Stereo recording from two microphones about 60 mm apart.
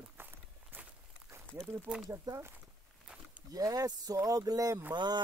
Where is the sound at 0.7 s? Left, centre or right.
Right.